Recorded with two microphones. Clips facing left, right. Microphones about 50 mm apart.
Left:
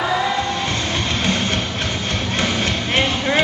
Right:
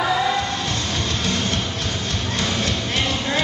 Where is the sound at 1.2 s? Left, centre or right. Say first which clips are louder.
Left 3 dB; left.